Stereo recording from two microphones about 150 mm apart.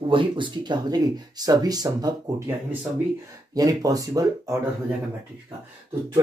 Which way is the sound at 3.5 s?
25° right (ahead or behind).